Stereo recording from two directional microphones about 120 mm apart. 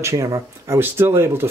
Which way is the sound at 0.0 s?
25° right (ahead or behind).